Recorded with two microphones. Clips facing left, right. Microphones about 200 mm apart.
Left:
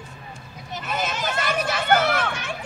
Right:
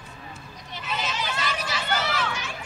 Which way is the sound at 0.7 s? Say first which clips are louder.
Left 4 dB; 50° left (ahead or behind).